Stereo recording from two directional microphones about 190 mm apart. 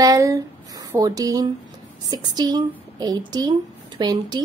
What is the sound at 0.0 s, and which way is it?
Speech, 15° right (ahead or behind).